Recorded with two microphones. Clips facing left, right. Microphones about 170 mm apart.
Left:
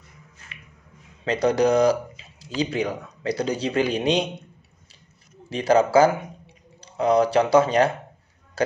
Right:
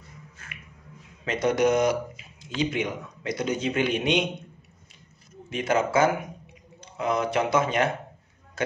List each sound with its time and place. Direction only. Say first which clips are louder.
1.2 s speech: left 3 dB; 35° left (ahead or behind)
5.5 s speech: left 6 dB; 35° left (ahead or behind)